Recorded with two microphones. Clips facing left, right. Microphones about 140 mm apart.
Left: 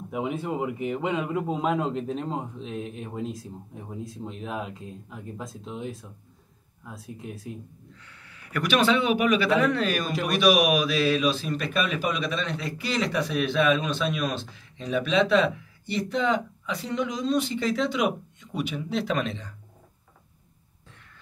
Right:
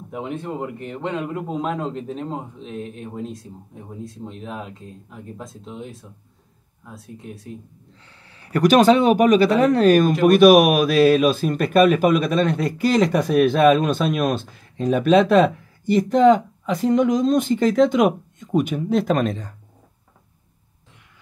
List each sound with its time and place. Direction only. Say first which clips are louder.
0.1 s a man's voice: even; 5° left (ahead or behind)
7.9 s a man's voice: right 1 dB; 30° right (ahead or behind); by 19.5 s 45° right (ahead or behind)